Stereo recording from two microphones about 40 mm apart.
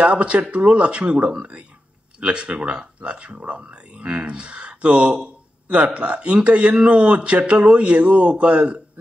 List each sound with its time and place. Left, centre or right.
0.0 s speech: right